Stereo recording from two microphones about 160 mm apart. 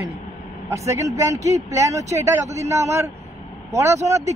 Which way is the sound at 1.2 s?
20° right (ahead or behind).